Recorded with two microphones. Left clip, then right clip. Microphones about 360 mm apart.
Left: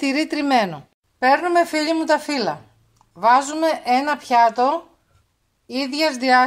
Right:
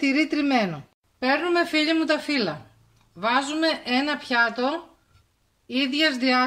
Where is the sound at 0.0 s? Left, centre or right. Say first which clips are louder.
Left 1 dB; left.